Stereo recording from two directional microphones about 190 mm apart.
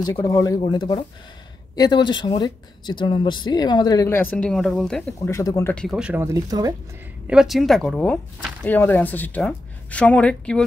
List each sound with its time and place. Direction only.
0.0 s speech: 20° left (ahead or behind); by 5.3 s 5° left (ahead or behind)
5.3 s speech: 15° left (ahead or behind)
5.9 s speech: 5° right (ahead or behind)
7.2 s speech: centre (ahead or behind)